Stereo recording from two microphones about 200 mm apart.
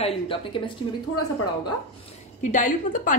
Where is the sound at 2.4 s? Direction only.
40° left (ahead or behind).